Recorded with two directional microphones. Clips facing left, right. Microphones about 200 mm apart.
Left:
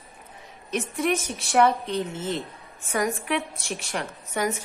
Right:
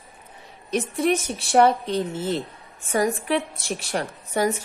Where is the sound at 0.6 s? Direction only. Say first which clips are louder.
Right 3 dB; 35° right (ahead or behind).